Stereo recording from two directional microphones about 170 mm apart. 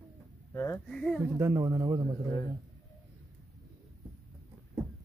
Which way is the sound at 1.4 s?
20° right (ahead or behind).